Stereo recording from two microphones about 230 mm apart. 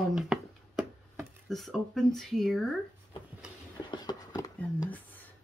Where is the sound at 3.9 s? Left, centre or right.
Centre.